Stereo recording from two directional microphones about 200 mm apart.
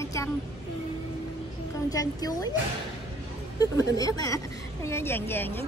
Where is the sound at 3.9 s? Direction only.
20° left (ahead or behind).